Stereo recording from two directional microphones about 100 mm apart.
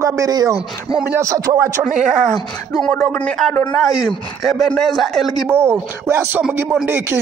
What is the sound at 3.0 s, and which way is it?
Speech, 10° left (ahead or behind).